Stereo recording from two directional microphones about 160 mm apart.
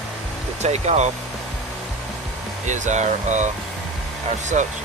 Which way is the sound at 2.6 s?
50° right (ahead or behind).